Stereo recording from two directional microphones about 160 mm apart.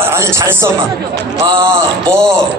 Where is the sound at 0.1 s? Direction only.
15° right (ahead or behind).